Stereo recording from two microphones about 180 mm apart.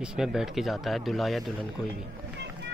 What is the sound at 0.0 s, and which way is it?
Speech, 5° right (ahead or behind).